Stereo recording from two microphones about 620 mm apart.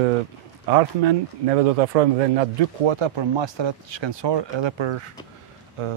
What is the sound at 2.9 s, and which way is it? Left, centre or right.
Speech, right.